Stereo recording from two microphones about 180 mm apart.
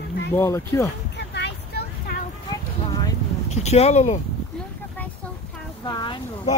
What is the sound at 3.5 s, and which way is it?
Speech, 35° left (ahead or behind).